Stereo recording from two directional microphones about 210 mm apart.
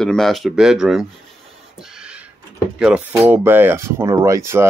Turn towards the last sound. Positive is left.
turn(degrees=-10)  # may be behind; listen again after turning